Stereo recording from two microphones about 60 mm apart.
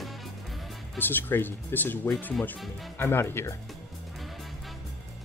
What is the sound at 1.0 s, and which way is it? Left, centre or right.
Speech, left.